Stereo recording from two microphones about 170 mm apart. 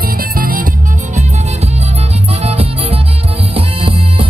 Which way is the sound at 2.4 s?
35° right (ahead or behind).